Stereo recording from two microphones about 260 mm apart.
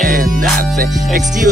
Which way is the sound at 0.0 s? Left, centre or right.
Right.